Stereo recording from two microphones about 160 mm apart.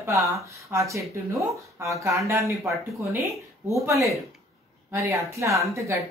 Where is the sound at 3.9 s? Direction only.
20° right (ahead or behind).